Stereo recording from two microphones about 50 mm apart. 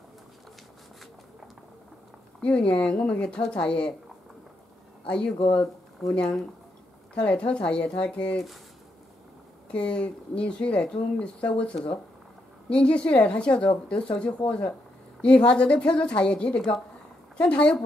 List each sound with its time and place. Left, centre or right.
2.4 s speech: left
5.0 s speech: centre
7.2 s speech: left
9.7 s speech: left